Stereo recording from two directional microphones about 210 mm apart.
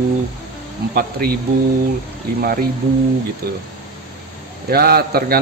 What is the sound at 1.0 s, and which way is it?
Speech, 45° right (ahead or behind).